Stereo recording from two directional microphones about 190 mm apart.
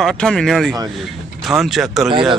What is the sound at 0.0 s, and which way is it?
A man's voice, 5° left (ahead or behind).